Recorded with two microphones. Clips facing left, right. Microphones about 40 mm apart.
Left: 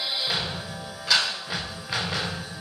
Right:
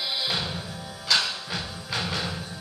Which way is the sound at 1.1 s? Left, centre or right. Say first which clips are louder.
Left 1 dB; centre.